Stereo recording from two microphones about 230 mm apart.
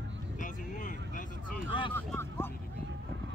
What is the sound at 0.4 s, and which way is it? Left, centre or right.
Vehicle, left.